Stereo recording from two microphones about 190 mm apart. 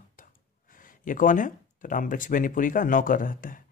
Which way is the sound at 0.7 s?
45° left (ahead or behind).